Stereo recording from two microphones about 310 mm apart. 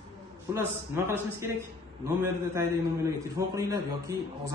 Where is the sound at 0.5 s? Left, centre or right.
Centre.